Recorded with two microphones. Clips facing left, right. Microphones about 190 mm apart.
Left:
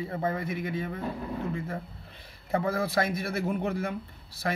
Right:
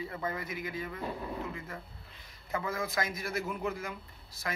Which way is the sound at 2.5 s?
30° left (ahead or behind).